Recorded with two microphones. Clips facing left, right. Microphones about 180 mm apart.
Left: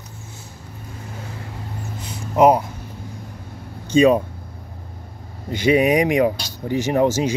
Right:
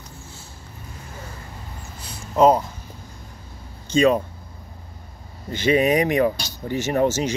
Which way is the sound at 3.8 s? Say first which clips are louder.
Left 3 dB; 15° left (ahead or behind).